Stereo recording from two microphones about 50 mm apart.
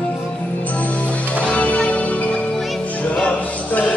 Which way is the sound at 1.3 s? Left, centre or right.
Left.